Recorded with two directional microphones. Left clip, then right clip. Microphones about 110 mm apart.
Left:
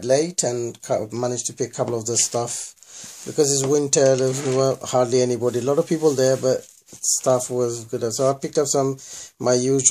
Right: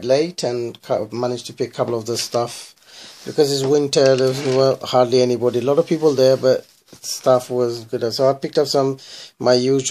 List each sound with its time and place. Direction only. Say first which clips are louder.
0.0 s speech: right 2 dB; centre (ahead or behind)